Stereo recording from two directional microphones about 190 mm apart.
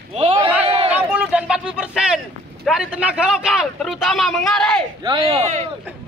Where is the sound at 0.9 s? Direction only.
10° right (ahead or behind).